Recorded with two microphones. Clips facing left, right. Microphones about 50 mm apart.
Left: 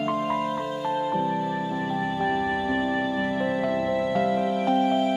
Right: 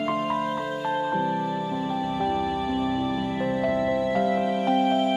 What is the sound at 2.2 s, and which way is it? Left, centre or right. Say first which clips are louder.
Music: left 1 dB; left.